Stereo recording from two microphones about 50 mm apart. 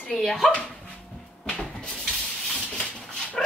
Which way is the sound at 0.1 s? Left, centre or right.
Centre.